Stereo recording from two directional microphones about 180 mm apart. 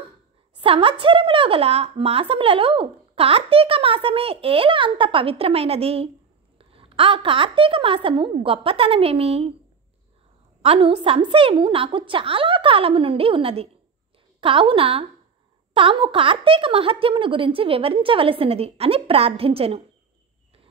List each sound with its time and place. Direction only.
0.6 s a woman's voice: 30° right (ahead or behind)
10.6 s a woman's voice: 30° right (ahead or behind)